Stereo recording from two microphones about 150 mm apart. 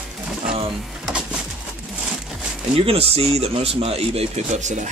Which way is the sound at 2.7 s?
40° right (ahead or behind).